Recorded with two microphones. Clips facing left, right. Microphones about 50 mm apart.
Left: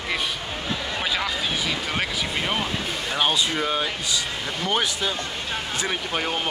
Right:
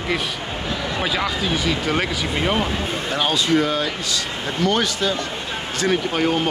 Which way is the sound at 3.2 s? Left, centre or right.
Centre.